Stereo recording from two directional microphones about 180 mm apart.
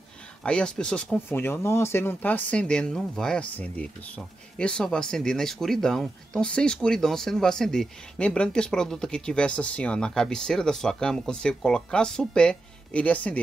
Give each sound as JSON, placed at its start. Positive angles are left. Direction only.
{"t": 0.4, "sound": "speech", "side_deg": 5}